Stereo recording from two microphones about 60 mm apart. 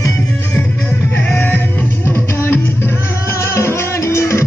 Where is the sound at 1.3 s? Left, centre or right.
Left.